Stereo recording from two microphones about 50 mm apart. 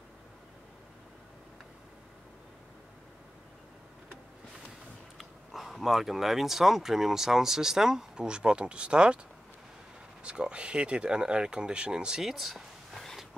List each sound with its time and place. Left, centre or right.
5.1 s speech: centre
10.2 s speech: centre
12.2 s a sound: centre